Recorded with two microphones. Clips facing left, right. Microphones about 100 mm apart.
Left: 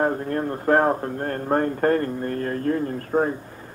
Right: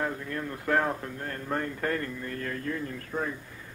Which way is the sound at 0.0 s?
45° left (ahead or behind).